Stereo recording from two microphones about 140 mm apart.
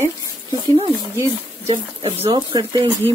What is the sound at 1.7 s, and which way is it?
Speech, 45° right (ahead or behind).